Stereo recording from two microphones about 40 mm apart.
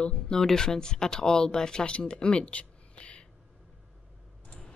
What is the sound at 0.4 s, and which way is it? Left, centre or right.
Speech, centre.